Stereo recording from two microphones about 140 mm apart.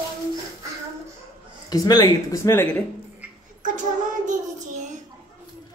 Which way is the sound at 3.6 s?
65° right (ahead or behind).